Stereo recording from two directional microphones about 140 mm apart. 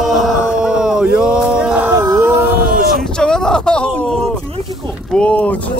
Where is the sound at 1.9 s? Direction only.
20° right (ahead or behind).